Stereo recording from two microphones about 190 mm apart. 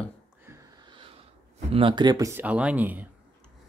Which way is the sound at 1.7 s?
25° right (ahead or behind).